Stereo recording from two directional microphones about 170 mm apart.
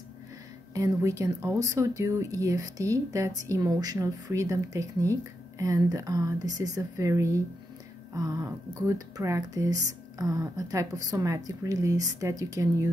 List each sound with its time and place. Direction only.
0.7 s speech: 20° right (ahead or behind)